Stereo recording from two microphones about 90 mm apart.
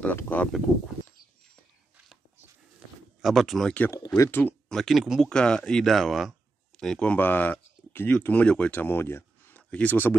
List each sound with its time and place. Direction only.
0.0 s speech: 20° left (ahead or behind)
3.2 s speech: centre (ahead or behind)
3.6 s speech: 15° left (ahead or behind)
3.9 s speech: 40° left (ahead or behind)
4.3 s speech: 20° left (ahead or behind)
4.6 s speech: centre (ahead or behind)
5.3 s speech: 10° left (ahead or behind)
6.8 s speech: 10° left (ahead or behind); by 9.6 s 25° left (ahead or behind)
9.6 s speech: 15° left (ahead or behind)